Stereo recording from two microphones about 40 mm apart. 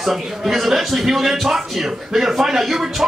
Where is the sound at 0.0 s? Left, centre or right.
Centre.